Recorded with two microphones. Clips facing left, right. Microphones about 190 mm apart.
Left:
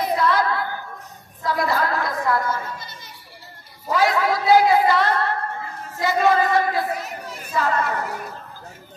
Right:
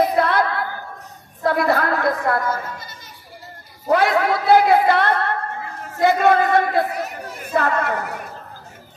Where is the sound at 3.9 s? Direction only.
60° right (ahead or behind).